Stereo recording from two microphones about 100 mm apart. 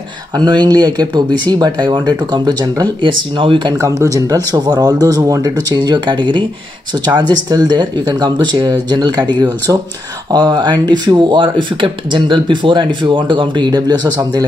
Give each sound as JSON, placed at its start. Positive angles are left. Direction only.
{"t": 0.4, "sound": "speech", "side_deg": -45}
{"t": 3.8, "sound": "speech", "side_deg": -35}
{"t": 10.3, "sound": "speech", "side_deg": -45}